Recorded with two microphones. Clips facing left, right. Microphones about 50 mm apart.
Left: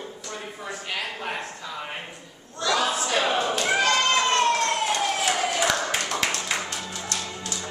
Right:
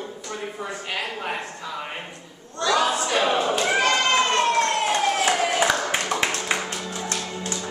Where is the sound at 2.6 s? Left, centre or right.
Centre.